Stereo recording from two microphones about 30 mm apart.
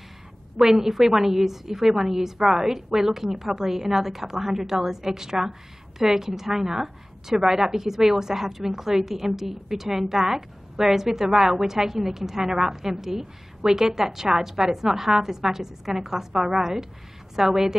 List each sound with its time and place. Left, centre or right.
0.7 s a woman's voice: centre